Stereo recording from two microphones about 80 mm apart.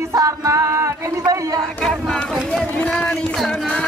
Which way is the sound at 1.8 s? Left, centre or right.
Centre.